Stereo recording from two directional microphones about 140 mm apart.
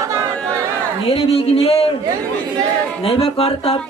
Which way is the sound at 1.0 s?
45° left (ahead or behind).